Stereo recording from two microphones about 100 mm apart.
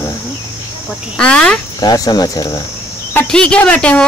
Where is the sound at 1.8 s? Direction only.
40° left (ahead or behind).